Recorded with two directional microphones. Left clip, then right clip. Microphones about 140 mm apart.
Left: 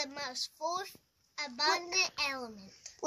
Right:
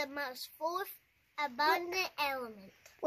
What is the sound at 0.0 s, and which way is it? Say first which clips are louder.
A child's voice: left 1 dB; 30° right (ahead or behind).